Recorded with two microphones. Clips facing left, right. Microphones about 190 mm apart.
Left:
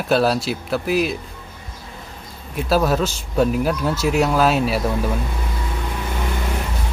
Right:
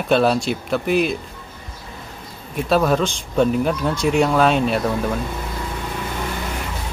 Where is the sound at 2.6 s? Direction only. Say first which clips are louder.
Right 1 dB; 5° left (ahead or behind).